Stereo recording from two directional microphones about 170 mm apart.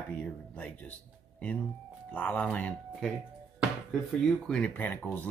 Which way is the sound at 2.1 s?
10° left (ahead or behind).